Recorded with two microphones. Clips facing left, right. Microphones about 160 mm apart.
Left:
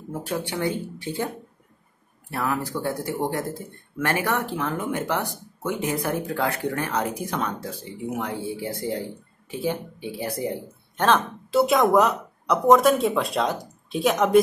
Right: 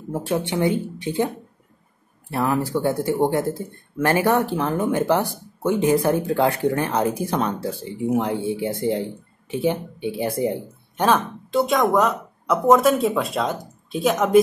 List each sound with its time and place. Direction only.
0.1 s speech: 25° right (ahead or behind)
2.3 s speech: 30° right (ahead or behind)
11.0 s speech: 10° right (ahead or behind)
11.5 s speech: 5° left (ahead or behind)